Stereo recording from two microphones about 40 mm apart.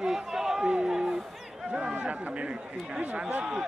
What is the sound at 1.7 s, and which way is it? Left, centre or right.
Chatter, right.